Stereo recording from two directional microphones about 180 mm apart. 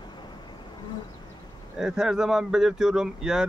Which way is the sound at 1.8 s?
5° right (ahead or behind).